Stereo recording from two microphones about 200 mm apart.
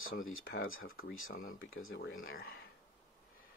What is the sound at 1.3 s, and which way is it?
Speech, 45° left (ahead or behind).